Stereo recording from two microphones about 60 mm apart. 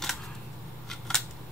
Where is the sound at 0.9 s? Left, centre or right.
Centre.